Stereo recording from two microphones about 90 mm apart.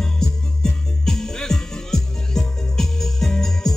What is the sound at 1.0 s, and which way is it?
Music, 5° left (ahead or behind).